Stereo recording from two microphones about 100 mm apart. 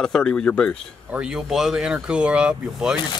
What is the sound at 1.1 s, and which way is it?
Speech, 5° right (ahead or behind).